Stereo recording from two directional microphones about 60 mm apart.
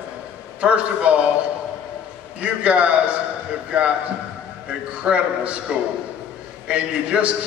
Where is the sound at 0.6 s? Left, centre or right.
Right.